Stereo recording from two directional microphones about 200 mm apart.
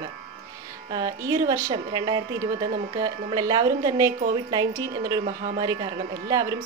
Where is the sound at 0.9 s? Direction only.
20° right (ahead or behind).